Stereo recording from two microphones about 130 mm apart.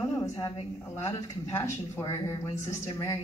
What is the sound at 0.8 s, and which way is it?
A woman's voice, 25° left (ahead or behind).